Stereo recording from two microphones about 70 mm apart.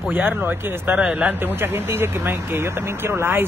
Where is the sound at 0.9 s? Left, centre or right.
Centre.